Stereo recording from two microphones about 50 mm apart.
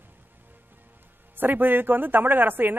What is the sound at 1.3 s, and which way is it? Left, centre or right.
Speech, right.